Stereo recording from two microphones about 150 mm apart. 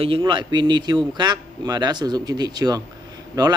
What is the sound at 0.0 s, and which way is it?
Speech, 35° right (ahead or behind).